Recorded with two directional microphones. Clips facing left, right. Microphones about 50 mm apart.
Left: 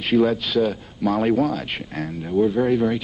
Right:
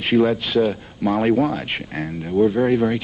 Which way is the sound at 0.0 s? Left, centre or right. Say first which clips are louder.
Right 1 dB; right.